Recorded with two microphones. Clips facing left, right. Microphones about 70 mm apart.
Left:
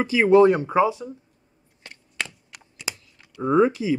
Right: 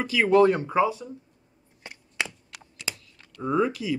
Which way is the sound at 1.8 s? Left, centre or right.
Centre.